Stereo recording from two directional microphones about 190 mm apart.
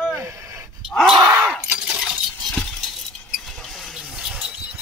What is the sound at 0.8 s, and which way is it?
Groan, centre (ahead or behind).